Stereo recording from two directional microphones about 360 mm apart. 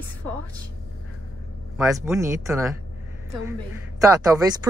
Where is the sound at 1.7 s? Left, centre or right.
Centre.